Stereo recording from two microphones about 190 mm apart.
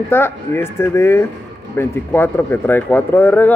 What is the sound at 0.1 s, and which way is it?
Speech, 10° left (ahead or behind).